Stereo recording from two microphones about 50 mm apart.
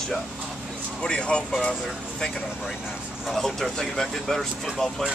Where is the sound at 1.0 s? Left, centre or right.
Centre.